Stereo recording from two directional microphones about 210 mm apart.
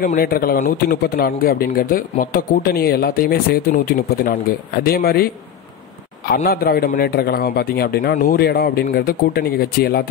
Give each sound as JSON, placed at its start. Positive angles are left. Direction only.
{"t": 0.0, "sound": "speech", "side_deg": 45}